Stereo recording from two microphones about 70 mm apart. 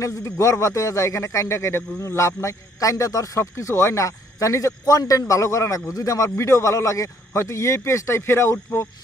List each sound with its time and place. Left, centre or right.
0.0 s a man's voice: left